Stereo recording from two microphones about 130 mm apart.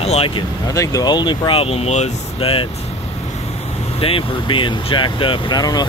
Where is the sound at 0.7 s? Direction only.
25° left (ahead or behind); by 2.7 s 45° left (ahead or behind).